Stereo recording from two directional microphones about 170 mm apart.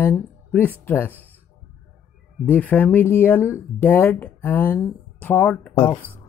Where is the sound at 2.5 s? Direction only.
10° left (ahead or behind).